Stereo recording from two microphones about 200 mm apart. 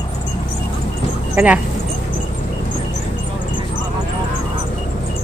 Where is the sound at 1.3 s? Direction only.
5° right (ahead or behind).